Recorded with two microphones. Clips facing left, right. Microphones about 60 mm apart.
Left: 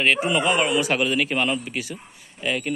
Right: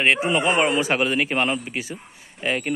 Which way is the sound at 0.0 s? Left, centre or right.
Right.